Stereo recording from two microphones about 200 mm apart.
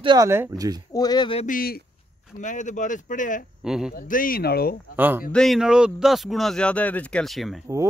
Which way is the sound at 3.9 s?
45° left (ahead or behind).